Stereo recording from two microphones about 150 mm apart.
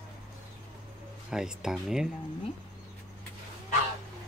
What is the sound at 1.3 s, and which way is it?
Speech, 5° right (ahead or behind).